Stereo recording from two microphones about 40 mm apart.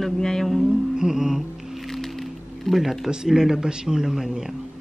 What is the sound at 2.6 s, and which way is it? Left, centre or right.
Speech, centre.